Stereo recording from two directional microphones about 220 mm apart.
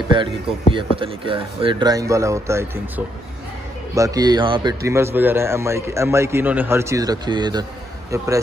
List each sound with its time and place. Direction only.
0.1 s a man's voice: 20° right (ahead or behind)
3.9 s a man's voice: 15° right (ahead or behind)